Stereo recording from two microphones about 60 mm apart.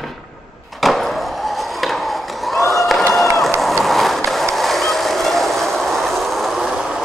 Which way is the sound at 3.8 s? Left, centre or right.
Centre.